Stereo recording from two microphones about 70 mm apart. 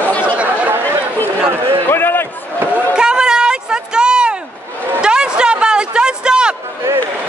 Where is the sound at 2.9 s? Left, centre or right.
Centre.